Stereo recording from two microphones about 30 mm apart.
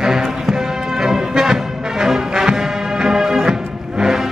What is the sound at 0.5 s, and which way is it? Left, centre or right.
Music, centre.